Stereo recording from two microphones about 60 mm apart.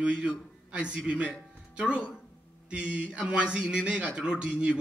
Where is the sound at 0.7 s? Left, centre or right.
Centre.